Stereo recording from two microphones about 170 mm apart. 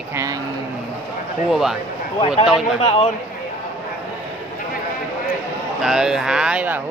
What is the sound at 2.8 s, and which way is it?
Speech, 35° left (ahead or behind).